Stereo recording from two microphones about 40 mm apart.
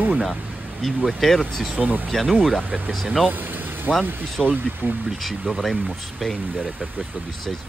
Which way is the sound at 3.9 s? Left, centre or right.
Centre.